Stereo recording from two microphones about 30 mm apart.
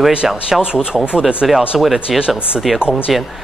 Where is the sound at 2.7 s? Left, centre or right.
Right.